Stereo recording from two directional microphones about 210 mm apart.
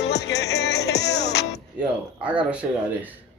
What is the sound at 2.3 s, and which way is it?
Speech, 5° right (ahead or behind).